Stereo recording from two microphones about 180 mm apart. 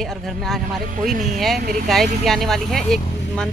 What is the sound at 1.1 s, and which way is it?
Speech, 45° right (ahead or behind).